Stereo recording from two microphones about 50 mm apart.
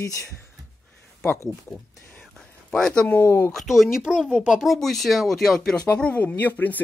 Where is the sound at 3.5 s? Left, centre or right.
Centre.